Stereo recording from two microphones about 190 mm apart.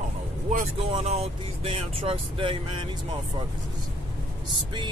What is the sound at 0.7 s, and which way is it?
Speech, 30° right (ahead or behind).